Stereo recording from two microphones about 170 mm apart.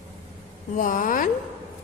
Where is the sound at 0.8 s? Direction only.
50° left (ahead or behind).